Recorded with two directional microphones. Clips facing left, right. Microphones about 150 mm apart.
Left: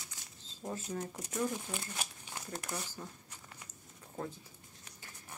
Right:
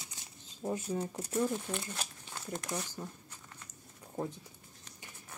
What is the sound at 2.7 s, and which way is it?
Speech, 15° right (ahead or behind).